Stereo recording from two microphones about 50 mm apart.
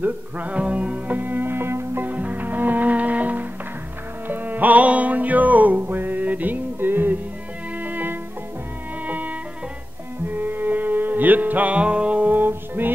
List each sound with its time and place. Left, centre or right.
0.0 s music: right
2.0 s music: right
12.3 s music: right